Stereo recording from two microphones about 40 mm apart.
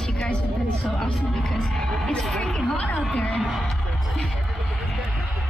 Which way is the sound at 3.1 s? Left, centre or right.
Left.